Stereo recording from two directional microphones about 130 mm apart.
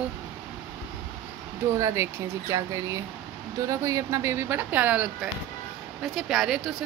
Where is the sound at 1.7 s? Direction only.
20° right (ahead or behind).